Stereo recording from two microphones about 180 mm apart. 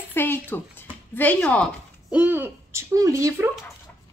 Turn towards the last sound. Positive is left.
turn(degrees=-15)  # may be behind; listen again after turning